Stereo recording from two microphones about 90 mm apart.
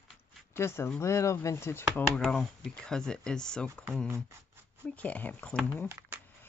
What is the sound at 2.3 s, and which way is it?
Speech, 10° left (ahead or behind).